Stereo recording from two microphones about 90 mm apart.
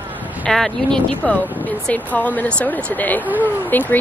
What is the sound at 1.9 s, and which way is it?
Speech, 20° left (ahead or behind).